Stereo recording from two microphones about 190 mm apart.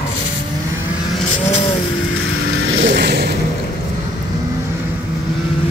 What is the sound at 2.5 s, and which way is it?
Music, 90° right.